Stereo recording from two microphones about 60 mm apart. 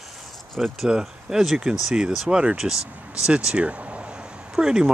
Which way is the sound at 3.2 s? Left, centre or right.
Centre.